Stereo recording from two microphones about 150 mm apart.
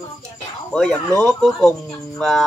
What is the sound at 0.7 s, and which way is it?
Speech, 5° left (ahead or behind).